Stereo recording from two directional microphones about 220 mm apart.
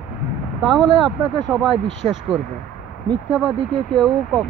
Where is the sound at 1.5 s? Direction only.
Centre (ahead or behind).